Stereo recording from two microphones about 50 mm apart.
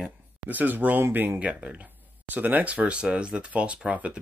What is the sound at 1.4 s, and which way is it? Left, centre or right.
Speech, right.